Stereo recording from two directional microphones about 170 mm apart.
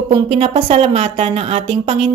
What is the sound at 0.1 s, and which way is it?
A woman's voice, 30° right (ahead or behind).